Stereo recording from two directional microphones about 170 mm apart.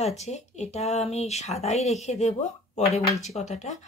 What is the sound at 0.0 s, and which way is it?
Speech, 40° left (ahead or behind).